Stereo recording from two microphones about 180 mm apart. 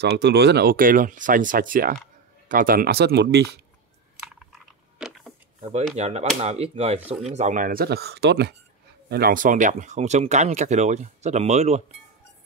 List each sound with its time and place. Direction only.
0.0 s speech: 70° right (ahead or behind)
4.2 s chewing: 5° right (ahead or behind)
5.6 s speech: 35° right (ahead or behind); by 8.5 s 70° right (ahead or behind)
9.1 s speech: 55° right (ahead or behind); by 11.8 s 40° right (ahead or behind)